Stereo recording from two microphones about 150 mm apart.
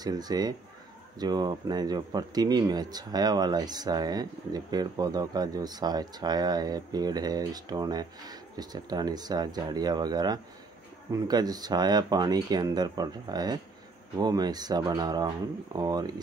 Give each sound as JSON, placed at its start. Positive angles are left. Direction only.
{"t": 0.0, "sound": "speech", "side_deg": -25}